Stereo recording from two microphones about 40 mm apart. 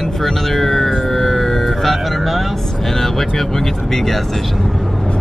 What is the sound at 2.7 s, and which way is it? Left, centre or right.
Speech, centre.